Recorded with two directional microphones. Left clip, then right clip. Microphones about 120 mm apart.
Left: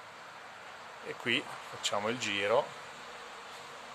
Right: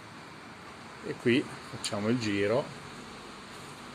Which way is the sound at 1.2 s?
35° left (ahead or behind).